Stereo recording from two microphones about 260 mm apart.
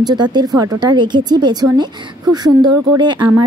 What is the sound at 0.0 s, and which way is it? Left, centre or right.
Speech, centre.